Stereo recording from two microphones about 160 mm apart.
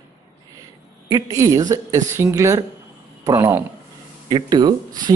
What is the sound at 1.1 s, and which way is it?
Speech, 20° right (ahead or behind).